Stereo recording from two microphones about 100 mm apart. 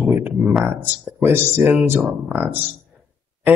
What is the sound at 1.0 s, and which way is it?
Speech, 20° right (ahead or behind).